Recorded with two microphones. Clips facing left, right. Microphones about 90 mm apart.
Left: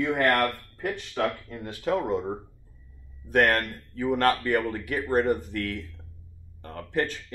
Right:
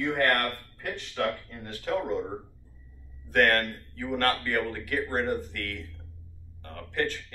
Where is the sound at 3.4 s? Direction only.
15° left (ahead or behind).